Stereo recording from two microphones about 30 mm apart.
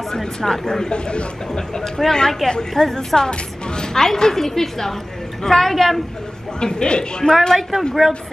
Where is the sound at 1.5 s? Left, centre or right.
Centre.